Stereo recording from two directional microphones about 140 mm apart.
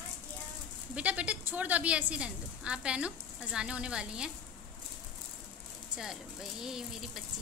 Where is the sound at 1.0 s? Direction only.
10° right (ahead or behind).